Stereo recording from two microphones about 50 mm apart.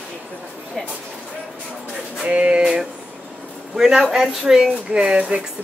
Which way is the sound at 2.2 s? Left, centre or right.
Right.